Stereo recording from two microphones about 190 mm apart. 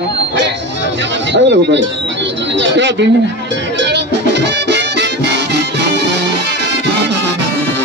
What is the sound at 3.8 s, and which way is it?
Music, 65° right (ahead or behind).